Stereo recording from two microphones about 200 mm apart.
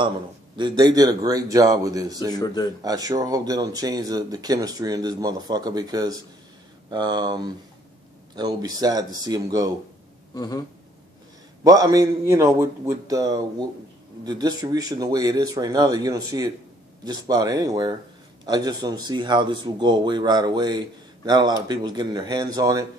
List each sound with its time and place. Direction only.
0.6 s speech: 20° right (ahead or behind)
2.3 s a man's voice: 20° left (ahead or behind)
2.8 s speech: 20° right (ahead or behind)
10.3 s a man's voice: 20° left (ahead or behind)
11.6 s a man's voice: 15° right (ahead or behind)